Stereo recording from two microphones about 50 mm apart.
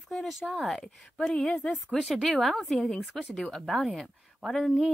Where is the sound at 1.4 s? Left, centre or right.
Centre.